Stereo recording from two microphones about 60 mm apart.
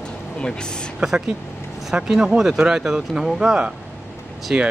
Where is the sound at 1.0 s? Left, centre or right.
Centre.